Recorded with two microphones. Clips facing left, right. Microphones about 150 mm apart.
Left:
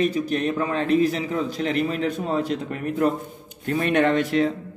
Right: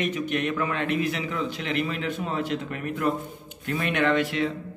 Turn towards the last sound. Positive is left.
turn(degrees=40)  # may be behind; listen again after turning